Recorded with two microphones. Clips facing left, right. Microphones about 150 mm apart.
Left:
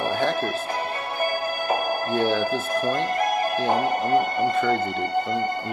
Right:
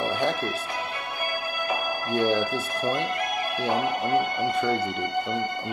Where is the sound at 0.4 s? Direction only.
40° left (ahead or behind).